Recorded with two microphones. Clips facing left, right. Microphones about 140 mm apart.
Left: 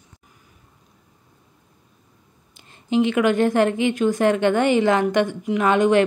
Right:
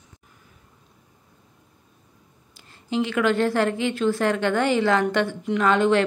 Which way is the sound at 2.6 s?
20° left (ahead or behind).